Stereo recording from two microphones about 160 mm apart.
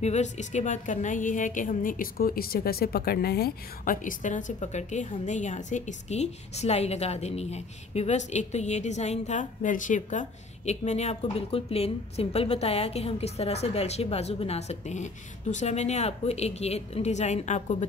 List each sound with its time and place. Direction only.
0.0 s a woman's voice: 45° left (ahead or behind)